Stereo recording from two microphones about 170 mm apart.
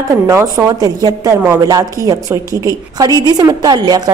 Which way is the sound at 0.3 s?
15° right (ahead or behind).